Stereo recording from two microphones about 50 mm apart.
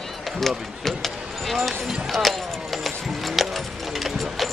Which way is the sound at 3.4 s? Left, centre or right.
Centre.